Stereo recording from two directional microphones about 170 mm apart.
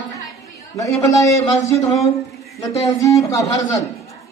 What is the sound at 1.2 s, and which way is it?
Speech, 20° left (ahead or behind).